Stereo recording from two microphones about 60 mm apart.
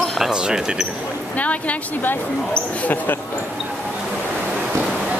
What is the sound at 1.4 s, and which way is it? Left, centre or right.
Speech, left.